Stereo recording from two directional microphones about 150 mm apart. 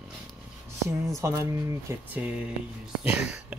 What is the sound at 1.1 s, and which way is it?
Speech, 20° right (ahead or behind).